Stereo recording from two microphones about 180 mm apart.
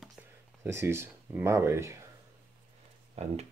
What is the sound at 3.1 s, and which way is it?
Speech, 35° right (ahead or behind).